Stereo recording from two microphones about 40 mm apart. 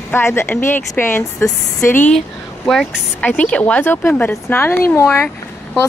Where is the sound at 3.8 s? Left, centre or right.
Left.